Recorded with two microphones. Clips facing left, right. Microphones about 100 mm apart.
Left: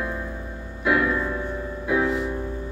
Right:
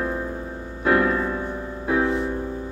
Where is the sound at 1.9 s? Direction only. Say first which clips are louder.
Right 1 dB; 30° right (ahead or behind).